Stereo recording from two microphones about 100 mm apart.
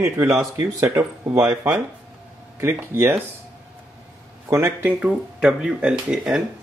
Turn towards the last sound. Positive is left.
turn(degrees=-10)  # may be behind; listen again after turning